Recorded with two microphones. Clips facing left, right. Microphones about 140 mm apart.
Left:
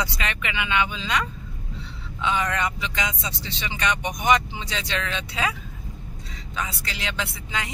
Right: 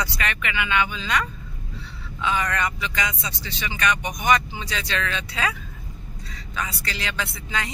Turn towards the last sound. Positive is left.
turn(degrees=20)  # may be behind; listen again after turning